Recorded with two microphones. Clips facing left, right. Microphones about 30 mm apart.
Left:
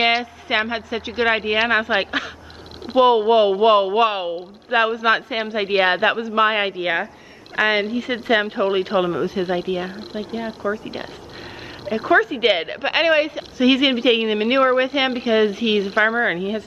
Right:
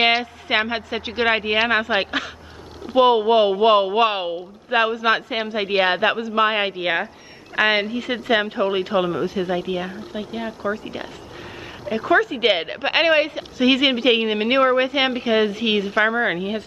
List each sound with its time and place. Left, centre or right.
0.0 s a woman's voice: centre
8.3 s speech: centre
12.1 s a woman's voice: centre
12.4 s speech: centre
15.8 s a woman's voice: centre
16.2 s speech: centre